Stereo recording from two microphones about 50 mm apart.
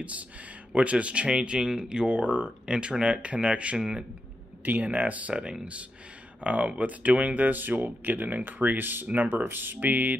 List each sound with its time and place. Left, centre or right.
0.0 s speech: right
4.8 s speech: right
5.3 s speech: centre; by 9.0 s right
9.0 s speech: right
9.3 s speech: right